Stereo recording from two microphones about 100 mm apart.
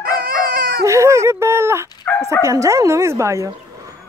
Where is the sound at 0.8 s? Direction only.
30° right (ahead or behind).